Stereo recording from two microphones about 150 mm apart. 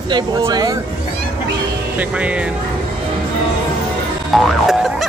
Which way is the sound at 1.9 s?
10° right (ahead or behind).